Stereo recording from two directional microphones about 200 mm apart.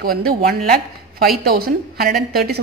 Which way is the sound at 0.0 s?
50° right (ahead or behind).